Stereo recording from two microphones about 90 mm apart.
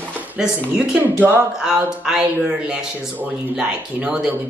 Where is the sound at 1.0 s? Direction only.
20° right (ahead or behind).